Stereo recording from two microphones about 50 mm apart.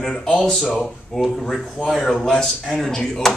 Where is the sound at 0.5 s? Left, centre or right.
Centre.